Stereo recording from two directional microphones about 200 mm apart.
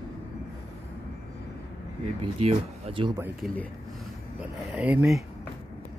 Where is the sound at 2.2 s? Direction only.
30° right (ahead or behind).